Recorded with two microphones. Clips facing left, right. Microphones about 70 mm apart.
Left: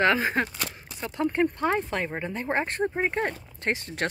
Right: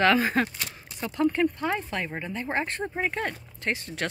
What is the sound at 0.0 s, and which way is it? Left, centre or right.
Speech, centre.